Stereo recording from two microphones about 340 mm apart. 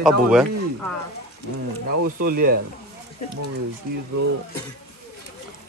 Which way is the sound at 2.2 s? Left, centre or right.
Right.